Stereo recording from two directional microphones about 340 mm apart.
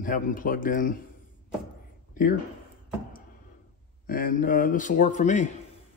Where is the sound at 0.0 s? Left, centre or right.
Left.